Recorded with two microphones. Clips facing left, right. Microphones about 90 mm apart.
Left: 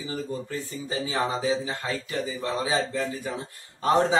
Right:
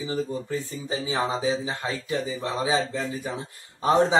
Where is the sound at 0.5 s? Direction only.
20° right (ahead or behind).